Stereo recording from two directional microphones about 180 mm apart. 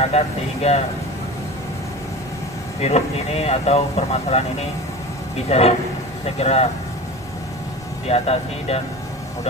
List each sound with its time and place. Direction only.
0.0 s speech: 35° left (ahead or behind)
2.8 s speech: 35° left (ahead or behind)
8.1 s speech: 35° left (ahead or behind)